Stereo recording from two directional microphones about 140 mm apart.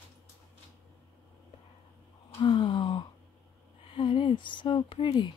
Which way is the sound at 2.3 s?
35° left (ahead or behind).